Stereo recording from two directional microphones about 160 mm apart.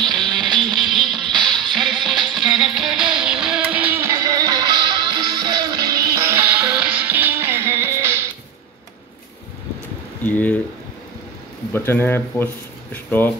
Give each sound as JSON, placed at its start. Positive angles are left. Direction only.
{"t": 0.0, "sound": "music", "side_deg": 5}
{"t": 6.1, "sound": "music", "side_deg": -15}
{"t": 10.2, "sound": "speech", "side_deg": 10}
{"t": 11.7, "sound": "speech", "side_deg": 15}